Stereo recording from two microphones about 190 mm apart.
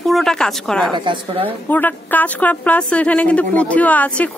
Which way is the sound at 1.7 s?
10° left (ahead or behind).